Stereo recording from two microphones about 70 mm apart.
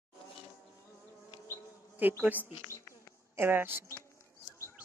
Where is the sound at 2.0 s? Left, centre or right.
Right.